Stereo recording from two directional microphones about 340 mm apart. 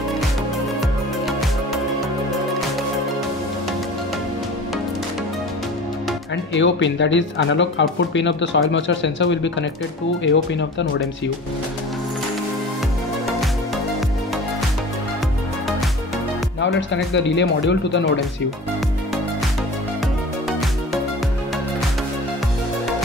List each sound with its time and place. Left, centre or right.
0.7 s music: centre
6.3 s speech: left
16.6 s speech: left